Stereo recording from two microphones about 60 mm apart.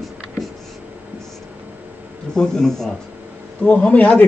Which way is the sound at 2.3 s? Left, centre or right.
Centre.